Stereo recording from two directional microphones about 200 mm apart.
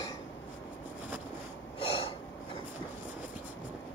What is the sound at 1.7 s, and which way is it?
Snort, 30° left (ahead or behind).